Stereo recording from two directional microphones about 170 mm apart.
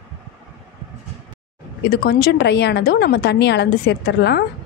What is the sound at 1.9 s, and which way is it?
A woman's voice, 65° left (ahead or behind).